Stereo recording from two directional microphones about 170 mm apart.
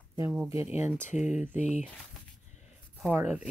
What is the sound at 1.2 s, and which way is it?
Speech, 45° left (ahead or behind).